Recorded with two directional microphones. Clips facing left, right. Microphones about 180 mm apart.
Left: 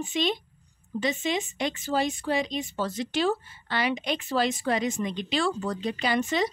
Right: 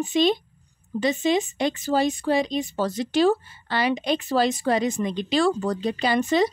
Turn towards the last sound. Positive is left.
turn(degrees=-35)  # may be behind; listen again after turning